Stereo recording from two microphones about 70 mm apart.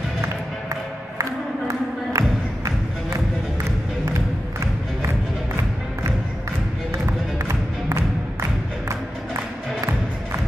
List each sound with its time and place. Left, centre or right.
1.7 s music: right
7.9 s music: right